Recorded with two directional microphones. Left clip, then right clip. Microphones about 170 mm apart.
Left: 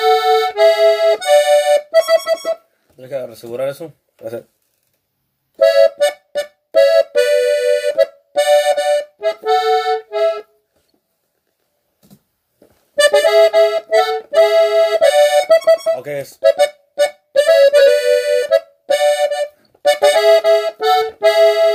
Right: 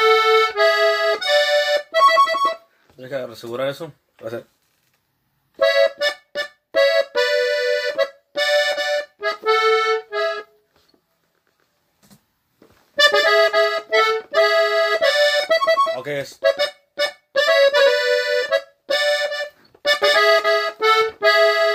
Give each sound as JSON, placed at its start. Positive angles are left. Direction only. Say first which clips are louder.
{"t": 0.0, "sound": "accordion", "louder": "left 2 dB", "side_deg": 5}
{"t": 3.0, "sound": "speech", "louder": "left 3 dB", "side_deg": 15}
{"t": 5.6, "sound": "accordion", "louder": "left 6 dB", "side_deg": 5}
{"t": 12.5, "sound": "accordion", "louder": "left 3 dB", "side_deg": 5}
{"t": 16.0, "sound": "speech", "louder": "left 2 dB", "side_deg": 20}
{"t": 16.3, "sound": "accordion", "louder": "left 7 dB", "side_deg": 5}